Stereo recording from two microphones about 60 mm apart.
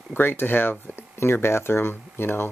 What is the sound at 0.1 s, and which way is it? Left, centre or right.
Speech, left.